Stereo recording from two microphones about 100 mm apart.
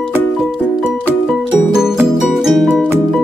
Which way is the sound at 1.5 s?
5° right (ahead or behind).